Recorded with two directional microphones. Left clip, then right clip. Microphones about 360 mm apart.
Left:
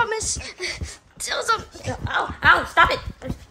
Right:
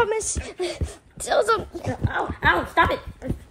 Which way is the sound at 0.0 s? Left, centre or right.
Centre.